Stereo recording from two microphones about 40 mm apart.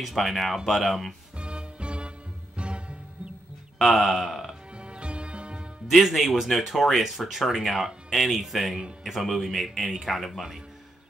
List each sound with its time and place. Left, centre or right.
0.0 s speech: centre
1.4 s music: right
3.9 s speech: centre
4.7 s music: right
5.9 s speech: centre